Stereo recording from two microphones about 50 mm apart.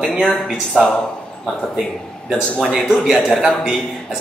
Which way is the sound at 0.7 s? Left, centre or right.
Centre.